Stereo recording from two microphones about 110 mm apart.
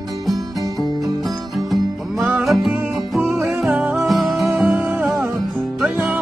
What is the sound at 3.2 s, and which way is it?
Music, 20° right (ahead or behind).